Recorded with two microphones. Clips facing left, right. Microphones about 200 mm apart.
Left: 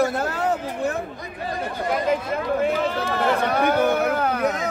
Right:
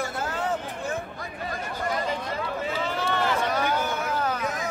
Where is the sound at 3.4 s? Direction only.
60° left (ahead or behind).